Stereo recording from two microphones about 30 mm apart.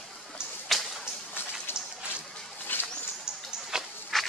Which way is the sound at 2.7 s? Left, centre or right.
Left.